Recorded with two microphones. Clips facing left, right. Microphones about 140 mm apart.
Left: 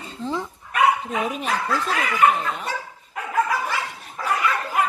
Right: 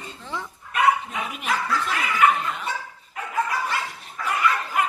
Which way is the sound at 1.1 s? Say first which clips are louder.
Left 3 dB; 40° left (ahead or behind).